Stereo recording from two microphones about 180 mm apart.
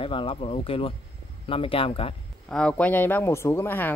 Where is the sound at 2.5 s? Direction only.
5° left (ahead or behind).